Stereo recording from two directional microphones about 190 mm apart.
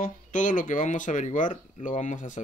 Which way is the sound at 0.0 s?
40° left (ahead or behind).